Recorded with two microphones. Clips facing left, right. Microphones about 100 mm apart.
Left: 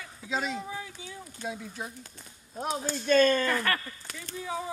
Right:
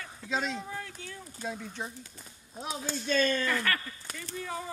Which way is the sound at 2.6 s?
45° left (ahead or behind).